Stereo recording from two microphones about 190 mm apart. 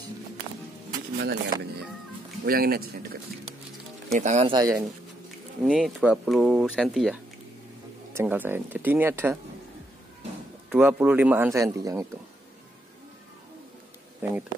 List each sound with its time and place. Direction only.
1.1 s speech: 60° right (ahead or behind)
4.1 s speech: 35° right (ahead or behind)
4.5 s speech: 20° right (ahead or behind)
5.6 s speech: centre (ahead or behind)
8.1 s speech: 10° right (ahead or behind)
10.7 s speech: 10° right (ahead or behind)